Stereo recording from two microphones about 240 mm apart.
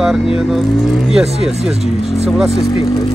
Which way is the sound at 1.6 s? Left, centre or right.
Right.